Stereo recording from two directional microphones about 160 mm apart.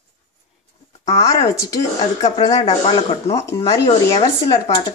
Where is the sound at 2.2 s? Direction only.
45° left (ahead or behind).